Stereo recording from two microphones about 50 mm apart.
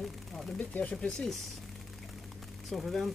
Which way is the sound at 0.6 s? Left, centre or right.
Left.